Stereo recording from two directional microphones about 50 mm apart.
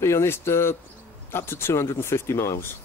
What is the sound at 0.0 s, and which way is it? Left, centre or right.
Speech, left.